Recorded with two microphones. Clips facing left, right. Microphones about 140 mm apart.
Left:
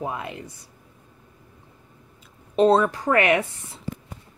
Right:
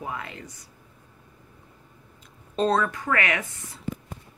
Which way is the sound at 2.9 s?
30° left (ahead or behind).